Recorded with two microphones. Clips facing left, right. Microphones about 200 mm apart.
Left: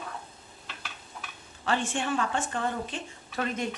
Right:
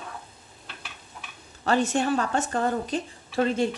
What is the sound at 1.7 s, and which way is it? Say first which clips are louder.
A woman's voice: right 6 dB; 40° right (ahead or behind).